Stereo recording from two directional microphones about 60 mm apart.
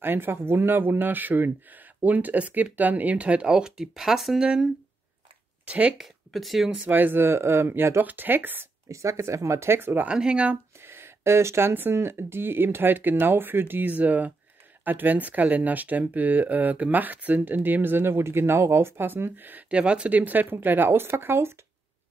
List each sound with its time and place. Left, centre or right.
0.0 s speech: right; by 4.5 s centre
5.7 s speech: right
5.9 s speech: centre
6.9 s speech: right
8.8 s speech: right
10.0 s speech: centre
10.8 s a sound: right
11.7 s speech: right
19.7 s speech: centre; by 21.5 s right